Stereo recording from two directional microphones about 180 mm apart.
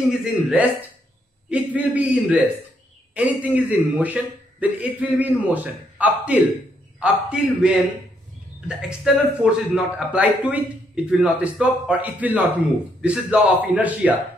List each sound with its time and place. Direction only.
0.1 s a man's voice: 5° right (ahead or behind)
1.8 s a man's voice: 10° right (ahead or behind)